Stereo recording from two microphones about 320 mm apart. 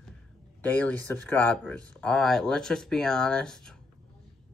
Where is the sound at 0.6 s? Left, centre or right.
Centre.